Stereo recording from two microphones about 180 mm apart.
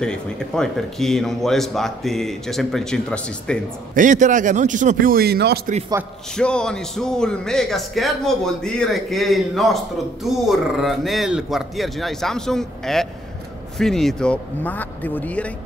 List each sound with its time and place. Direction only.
0.0 s speech: 5° left (ahead or behind)
3.9 s a man's voice: 45° right (ahead or behind); by 5.6 s 60° right (ahead or behind)
6.3 s speech: 5° left (ahead or behind)